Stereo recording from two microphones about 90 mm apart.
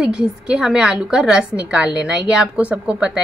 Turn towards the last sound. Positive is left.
turn(degrees=-10)  # may be behind; listen again after turning